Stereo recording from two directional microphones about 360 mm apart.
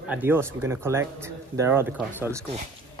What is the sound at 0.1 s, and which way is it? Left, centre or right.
Speech, centre.